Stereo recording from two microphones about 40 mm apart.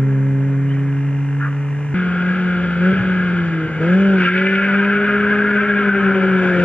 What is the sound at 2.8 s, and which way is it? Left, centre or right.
Vehicle, left.